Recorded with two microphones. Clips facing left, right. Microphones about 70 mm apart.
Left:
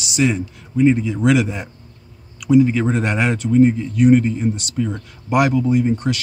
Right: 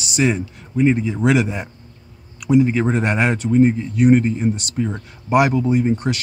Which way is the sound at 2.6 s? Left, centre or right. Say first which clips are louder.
Even; right.